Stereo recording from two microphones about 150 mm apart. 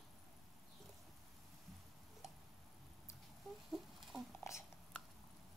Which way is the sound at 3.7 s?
Centre (ahead or behind).